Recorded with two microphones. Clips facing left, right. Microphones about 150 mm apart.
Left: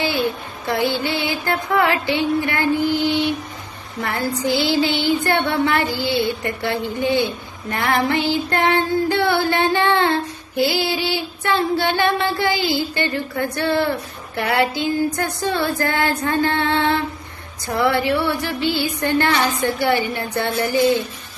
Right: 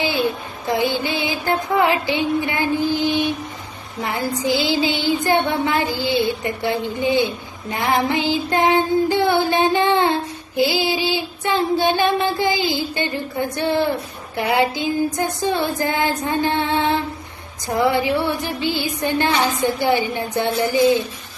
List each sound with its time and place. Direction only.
0.7 s a woman's voice: 15° right (ahead or behind)